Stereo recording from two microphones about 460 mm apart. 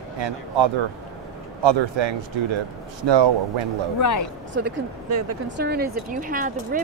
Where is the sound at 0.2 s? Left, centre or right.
Right.